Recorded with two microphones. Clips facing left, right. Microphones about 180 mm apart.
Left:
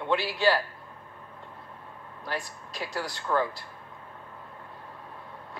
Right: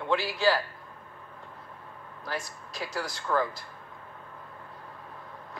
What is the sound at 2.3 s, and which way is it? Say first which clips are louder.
Speech: left 1 dB; 15° left (ahead or behind).